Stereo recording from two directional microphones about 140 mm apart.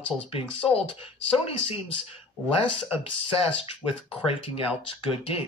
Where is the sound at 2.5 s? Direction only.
40° left (ahead or behind).